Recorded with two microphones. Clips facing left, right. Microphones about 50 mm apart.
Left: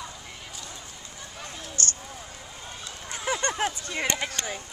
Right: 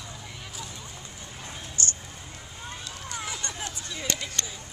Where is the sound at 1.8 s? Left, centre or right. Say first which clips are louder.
Left 1 dB; left.